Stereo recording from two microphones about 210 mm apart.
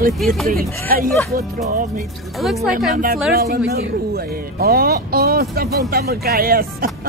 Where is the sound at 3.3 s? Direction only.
45° right (ahead or behind).